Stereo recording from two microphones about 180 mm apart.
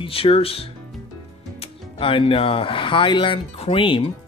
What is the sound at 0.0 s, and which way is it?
Speech, 30° left (ahead or behind).